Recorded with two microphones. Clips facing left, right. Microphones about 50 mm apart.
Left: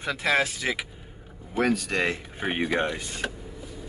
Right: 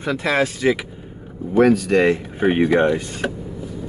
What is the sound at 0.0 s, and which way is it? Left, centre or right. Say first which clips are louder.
Speech: right 5 dB; centre.